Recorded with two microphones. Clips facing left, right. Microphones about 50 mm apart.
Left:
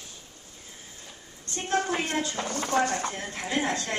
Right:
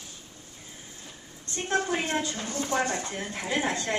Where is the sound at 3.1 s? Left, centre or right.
Centre.